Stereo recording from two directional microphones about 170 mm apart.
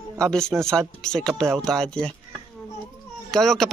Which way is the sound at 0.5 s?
15° right (ahead or behind).